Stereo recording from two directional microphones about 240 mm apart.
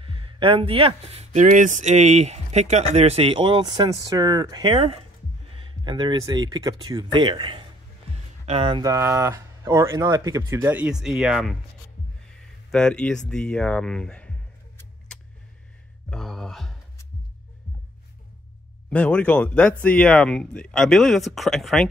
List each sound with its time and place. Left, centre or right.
0.0 s speech: right; by 14.3 s centre
16.1 s a sound: centre
18.9 s speech: centre